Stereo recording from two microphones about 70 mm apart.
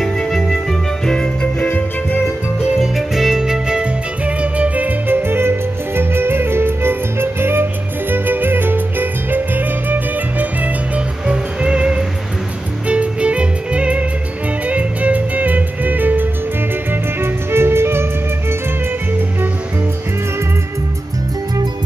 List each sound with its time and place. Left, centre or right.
0.0 s music: centre
2.8 s music: centre; by 18.0 s right